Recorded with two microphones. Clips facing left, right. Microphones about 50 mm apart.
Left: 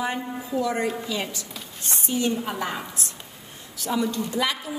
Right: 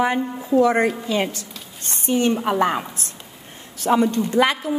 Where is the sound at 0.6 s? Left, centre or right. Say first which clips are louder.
Right 8 dB; right.